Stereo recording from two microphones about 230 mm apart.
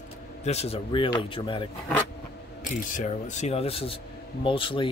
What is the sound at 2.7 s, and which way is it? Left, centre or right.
Speech, left.